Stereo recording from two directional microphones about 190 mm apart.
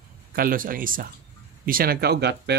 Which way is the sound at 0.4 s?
50° right (ahead or behind).